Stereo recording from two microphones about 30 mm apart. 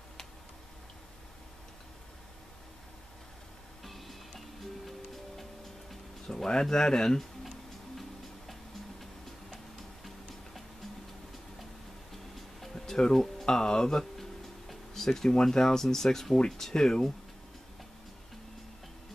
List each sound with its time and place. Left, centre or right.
3.8 s music: centre
6.2 s speech: left
12.1 s music: centre
12.7 s music: centre
13.5 s speech: left
14.7 s a sound: centre
15.2 s speech: left
16.7 s speech: left